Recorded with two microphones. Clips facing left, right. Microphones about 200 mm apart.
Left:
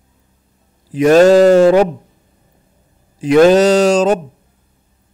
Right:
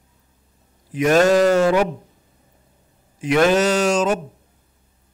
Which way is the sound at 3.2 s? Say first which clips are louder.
Left 8 dB; 35° left (ahead or behind).